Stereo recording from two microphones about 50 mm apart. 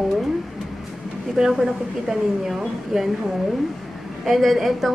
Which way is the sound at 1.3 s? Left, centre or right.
Centre.